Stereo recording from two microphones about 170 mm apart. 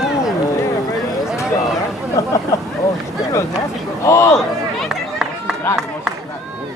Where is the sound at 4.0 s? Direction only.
15° left (ahead or behind).